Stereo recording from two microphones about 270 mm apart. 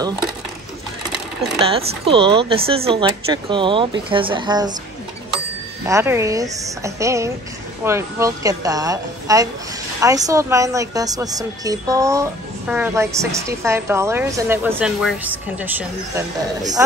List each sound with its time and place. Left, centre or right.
1.6 s a woman's voice: right
5.9 s a woman's voice: centre